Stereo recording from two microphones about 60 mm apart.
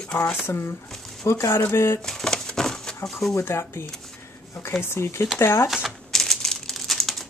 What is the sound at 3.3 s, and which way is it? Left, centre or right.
Speech, left.